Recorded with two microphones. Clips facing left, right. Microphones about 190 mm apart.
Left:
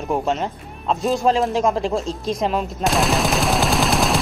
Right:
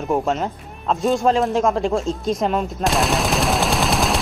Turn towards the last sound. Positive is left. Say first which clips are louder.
# left 1 dB
turn(degrees=0)  # may be behind; listen again after turning